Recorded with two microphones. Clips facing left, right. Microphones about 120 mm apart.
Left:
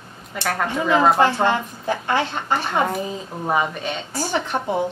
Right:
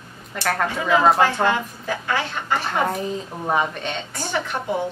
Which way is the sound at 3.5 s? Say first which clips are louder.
Left 1 dB; centre (ahead or behind).